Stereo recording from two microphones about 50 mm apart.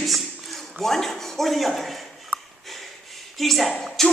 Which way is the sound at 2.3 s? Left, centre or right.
Right.